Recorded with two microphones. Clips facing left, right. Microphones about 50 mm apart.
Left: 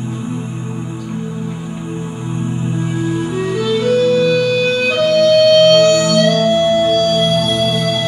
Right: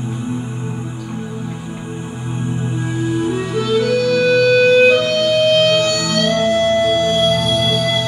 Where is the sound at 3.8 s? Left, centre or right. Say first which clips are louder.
Left 6 dB; left.